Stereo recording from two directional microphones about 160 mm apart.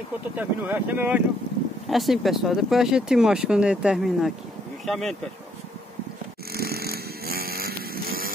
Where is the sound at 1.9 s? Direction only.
Centre (ahead or behind).